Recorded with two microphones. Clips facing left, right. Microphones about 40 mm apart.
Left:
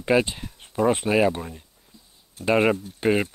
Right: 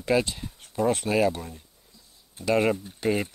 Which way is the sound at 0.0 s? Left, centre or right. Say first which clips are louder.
Left 3 dB; left.